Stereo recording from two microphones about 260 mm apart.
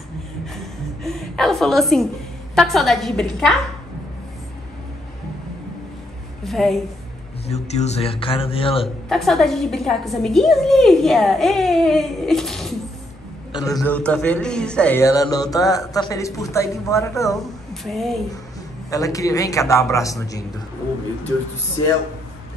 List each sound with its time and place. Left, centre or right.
1.0 s chuckle: centre
2.5 s a woman's voice: centre
6.4 s a woman's voice: centre
7.4 s a man's voice: left
8.8 s a woman's voice: centre
13.5 s a man's voice: centre
13.7 s a man's voice: centre
17.8 s a woman's voice: centre
18.9 s a man's voice: centre